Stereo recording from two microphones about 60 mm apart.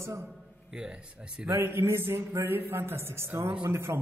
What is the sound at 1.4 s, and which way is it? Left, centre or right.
A man's voice, right.